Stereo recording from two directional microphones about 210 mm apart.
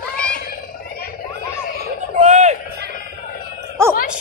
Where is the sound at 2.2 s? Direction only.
30° right (ahead or behind).